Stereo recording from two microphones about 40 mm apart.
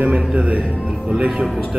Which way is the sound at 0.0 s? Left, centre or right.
Right.